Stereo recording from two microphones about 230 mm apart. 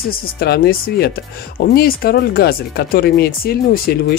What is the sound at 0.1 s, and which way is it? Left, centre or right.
Speech, left.